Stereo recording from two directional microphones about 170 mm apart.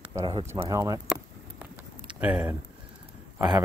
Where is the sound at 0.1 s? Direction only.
25° right (ahead or behind).